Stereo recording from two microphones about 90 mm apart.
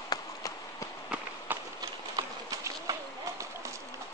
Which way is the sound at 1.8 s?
50° right (ahead or behind).